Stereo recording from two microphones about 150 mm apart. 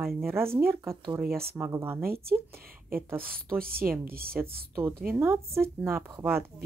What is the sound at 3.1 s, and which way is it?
A woman's voice, 75° right (ahead or behind).